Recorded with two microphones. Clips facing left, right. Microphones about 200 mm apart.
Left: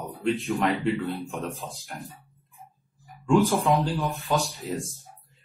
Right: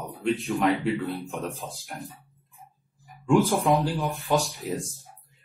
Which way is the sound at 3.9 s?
Centre (ahead or behind).